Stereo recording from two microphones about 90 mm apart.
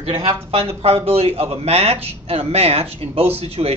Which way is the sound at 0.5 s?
90° right.